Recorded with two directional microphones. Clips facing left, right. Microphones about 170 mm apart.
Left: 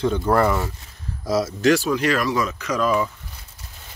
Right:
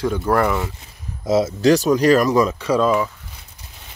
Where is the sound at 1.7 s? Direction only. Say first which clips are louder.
Right 6 dB; 40° right (ahead or behind).